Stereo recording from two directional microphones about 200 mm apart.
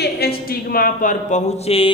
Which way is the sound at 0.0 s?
50° left (ahead or behind).